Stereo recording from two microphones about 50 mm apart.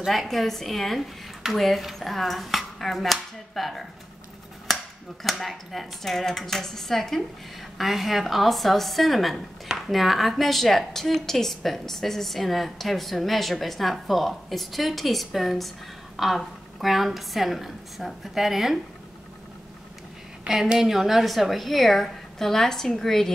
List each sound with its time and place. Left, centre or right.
0.0 s a woman's voice: centre
5.2 s a woman's voice: centre
20.6 s a woman's voice: centre
20.9 s a woman's voice: centre